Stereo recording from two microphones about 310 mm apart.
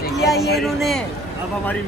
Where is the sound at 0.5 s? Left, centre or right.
Centre.